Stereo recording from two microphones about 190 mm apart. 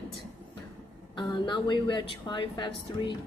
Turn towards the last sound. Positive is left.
turn(degrees=25)  # may be behind; listen again after turning